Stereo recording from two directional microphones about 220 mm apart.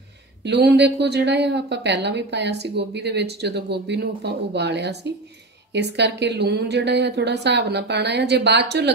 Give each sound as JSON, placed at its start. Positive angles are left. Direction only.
{"t": 0.5, "sound": "a woman's voice", "side_deg": -50}